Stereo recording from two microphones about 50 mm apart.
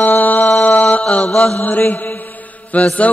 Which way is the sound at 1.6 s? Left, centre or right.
Left.